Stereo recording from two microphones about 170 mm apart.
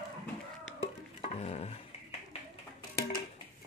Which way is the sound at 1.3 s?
40° left (ahead or behind).